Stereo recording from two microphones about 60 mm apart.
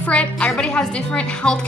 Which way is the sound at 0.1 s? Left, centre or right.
Centre.